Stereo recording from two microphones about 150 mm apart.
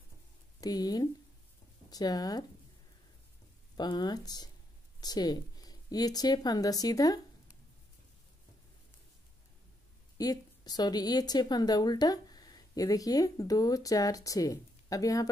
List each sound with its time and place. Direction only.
0.6 s a woman's voice: 25° left (ahead or behind)
3.7 s a woman's voice: 30° left (ahead or behind)
10.1 s a woman's voice: 25° left (ahead or behind)